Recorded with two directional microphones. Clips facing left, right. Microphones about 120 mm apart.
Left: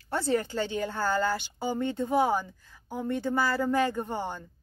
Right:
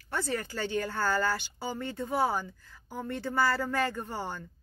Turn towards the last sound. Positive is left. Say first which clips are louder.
# left 4 dB
turn(degrees=20)  # may be behind; listen again after turning